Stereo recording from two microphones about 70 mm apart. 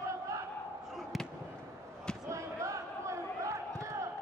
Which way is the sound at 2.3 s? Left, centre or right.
Right.